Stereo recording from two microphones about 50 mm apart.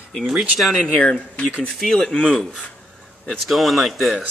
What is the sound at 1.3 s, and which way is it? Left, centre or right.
Speech, left.